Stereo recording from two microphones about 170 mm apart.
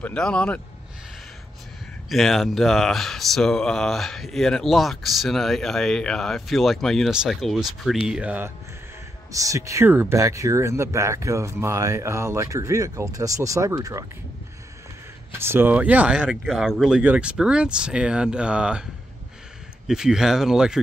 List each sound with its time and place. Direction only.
0.0 s speech: 5° left (ahead or behind)
2.0 s speech: centre (ahead or behind)
9.3 s speech: 20° right (ahead or behind)
15.3 s speech: 15° right (ahead or behind)
19.9 s speech: 5° right (ahead or behind)